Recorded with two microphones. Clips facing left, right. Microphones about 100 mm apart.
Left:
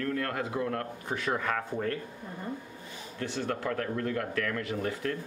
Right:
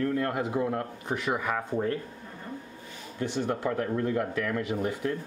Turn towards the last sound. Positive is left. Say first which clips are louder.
# right 3 dB
turn(degrees=-15)  # may be behind; listen again after turning